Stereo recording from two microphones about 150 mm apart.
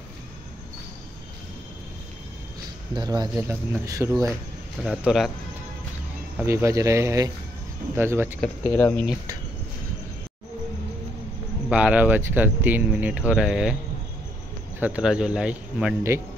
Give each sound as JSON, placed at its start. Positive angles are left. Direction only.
{"t": 2.9, "sound": "speech", "side_deg": -30}
{"t": 4.8, "sound": "speech", "side_deg": 0}
{"t": 6.4, "sound": "speech", "side_deg": -20}
{"t": 8.7, "sound": "speech", "side_deg": 15}
{"t": 11.7, "sound": "speech", "side_deg": -10}
{"t": 14.8, "sound": "speech", "side_deg": -10}